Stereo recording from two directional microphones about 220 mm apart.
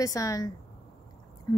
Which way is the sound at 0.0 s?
15° left (ahead or behind).